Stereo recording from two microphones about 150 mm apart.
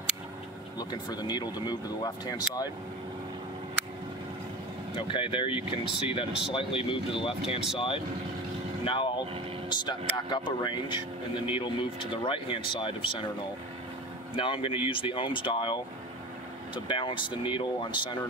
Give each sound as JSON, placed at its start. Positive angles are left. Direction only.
{"t": 0.7, "sound": "speech", "side_deg": 30}
{"t": 4.9, "sound": "speech", "side_deg": 35}
{"t": 8.8, "sound": "speech", "side_deg": 35}
{"t": 14.3, "sound": "speech", "side_deg": 35}